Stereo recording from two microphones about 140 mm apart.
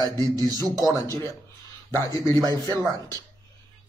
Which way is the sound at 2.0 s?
25° right (ahead or behind).